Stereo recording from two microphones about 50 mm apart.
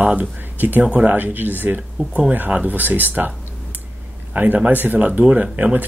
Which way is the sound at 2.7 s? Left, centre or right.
Right.